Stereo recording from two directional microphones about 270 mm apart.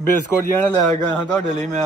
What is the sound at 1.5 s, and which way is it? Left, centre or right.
Speech, right.